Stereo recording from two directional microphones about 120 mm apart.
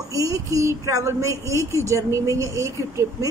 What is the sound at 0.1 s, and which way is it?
Speech, 30° right (ahead or behind).